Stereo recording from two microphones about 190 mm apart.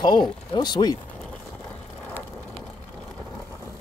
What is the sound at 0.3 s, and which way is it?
Speech, 25° left (ahead or behind).